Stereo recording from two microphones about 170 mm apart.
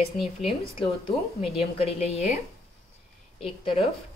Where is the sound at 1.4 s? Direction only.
35° left (ahead or behind).